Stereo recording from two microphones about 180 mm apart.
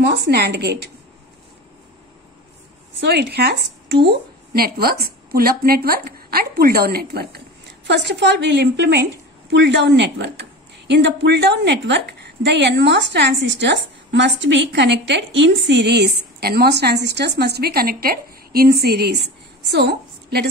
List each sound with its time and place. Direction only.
0.0 s a woman's voice: 65° right (ahead or behind)
3.0 s a woman's voice: 70° right (ahead or behind)
9.5 s a woman's voice: 85° right; by 20.4 s 65° right (ahead or behind)